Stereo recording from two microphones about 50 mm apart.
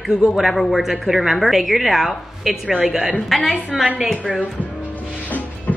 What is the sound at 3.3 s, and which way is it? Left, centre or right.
Speech, centre.